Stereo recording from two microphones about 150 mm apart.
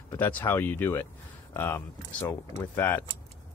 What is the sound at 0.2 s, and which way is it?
Speech, 15° left (ahead or behind).